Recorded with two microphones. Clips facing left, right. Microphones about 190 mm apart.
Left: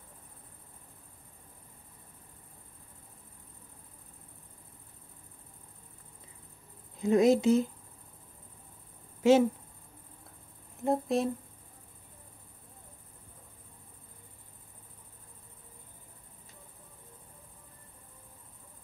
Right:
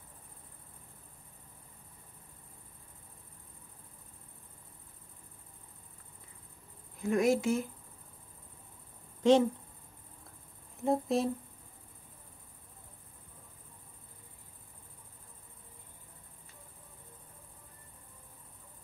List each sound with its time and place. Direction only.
7.0 s speech: 20° left (ahead or behind)
9.2 s speech: 5° left (ahead or behind)
10.8 s speech: centre (ahead or behind)